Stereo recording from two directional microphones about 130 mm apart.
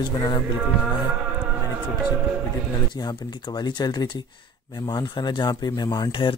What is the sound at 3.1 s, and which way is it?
Speech, 35° left (ahead or behind).